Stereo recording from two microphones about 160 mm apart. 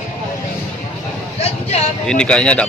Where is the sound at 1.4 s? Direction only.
40° left (ahead or behind).